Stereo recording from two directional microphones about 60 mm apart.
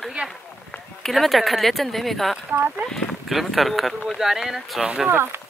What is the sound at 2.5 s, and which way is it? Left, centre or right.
Speech, right.